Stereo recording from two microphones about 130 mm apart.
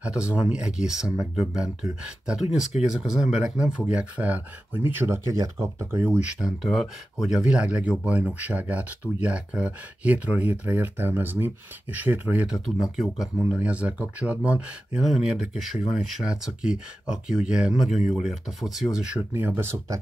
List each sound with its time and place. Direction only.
0.0 s speech: 10° right (ahead or behind)
6.4 s speech: centre (ahead or behind)
19.3 s speech: 15° right (ahead or behind)